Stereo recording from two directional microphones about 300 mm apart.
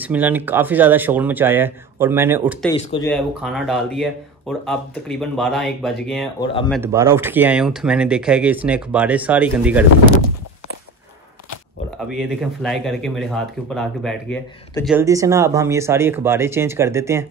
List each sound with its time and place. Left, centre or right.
0.0 s speech: centre
2.7 s speech: centre
3.1 s speech: centre
12.2 s speech: centre
14.9 s speech: centre